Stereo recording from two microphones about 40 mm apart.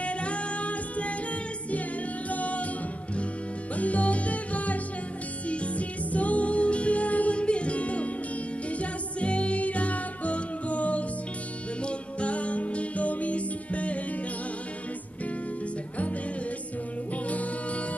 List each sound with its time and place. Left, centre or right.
0.0 s music: left
2.2 s music: left
3.7 s music: left
17.3 s music: left